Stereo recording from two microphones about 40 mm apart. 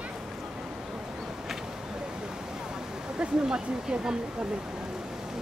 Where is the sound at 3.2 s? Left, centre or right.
Centre.